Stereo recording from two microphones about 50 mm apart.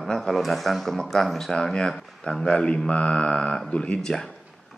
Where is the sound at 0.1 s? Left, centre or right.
Centre.